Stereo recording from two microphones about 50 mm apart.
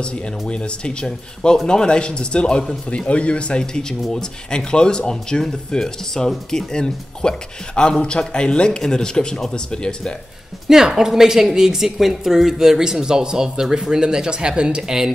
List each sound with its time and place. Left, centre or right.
0.0 s speech: left
10.7 s a woman's voice: centre